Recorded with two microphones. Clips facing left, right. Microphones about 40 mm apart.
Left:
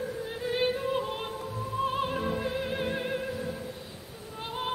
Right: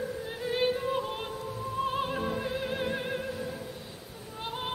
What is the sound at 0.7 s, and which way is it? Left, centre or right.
Yodeling, centre.